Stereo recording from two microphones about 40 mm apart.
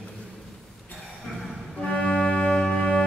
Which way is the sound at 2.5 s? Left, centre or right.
Centre.